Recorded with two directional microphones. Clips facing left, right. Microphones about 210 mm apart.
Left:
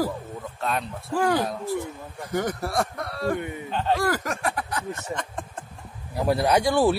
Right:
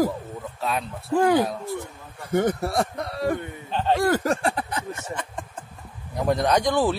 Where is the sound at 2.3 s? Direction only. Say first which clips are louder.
Right 4 dB; 25° right (ahead or behind).